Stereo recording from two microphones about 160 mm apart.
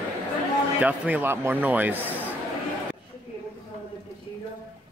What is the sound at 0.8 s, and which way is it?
Speech, 10° right (ahead or behind).